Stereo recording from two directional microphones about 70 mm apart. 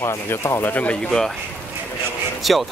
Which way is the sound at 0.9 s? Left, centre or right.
Centre.